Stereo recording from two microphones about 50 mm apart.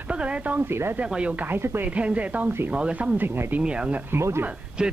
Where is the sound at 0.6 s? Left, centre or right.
Right.